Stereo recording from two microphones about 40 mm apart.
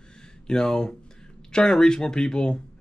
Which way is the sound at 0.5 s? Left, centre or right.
Centre.